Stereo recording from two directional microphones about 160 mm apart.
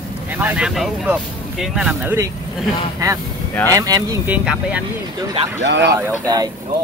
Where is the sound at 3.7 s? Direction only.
20° right (ahead or behind).